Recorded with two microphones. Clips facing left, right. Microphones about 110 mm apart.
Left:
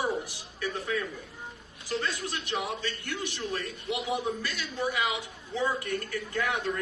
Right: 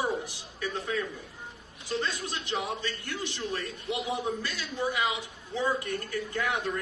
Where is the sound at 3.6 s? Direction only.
20° left (ahead or behind).